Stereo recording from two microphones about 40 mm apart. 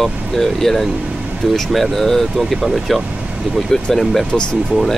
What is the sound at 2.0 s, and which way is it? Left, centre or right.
Speech, centre.